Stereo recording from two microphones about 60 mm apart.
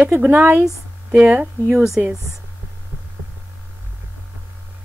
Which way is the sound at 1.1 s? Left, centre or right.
Centre.